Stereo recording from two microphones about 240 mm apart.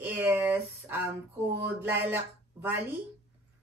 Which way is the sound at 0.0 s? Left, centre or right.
Centre.